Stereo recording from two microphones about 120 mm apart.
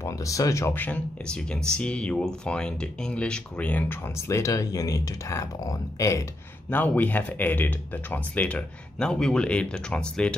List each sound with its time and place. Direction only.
0.0 s speech: 25° left (ahead or behind)
6.7 s speech: 15° left (ahead or behind)